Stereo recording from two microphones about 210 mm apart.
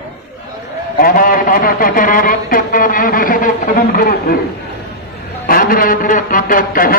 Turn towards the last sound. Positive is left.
turn(degrees=40)  # may be behind; listen again after turning